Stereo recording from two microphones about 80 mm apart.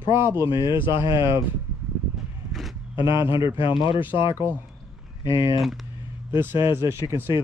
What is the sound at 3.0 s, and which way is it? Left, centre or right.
Speech, left.